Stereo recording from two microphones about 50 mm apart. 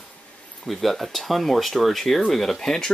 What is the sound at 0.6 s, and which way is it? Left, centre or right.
Speech, centre.